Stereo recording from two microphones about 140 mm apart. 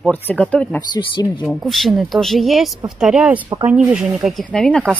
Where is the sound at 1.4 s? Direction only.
Centre (ahead or behind).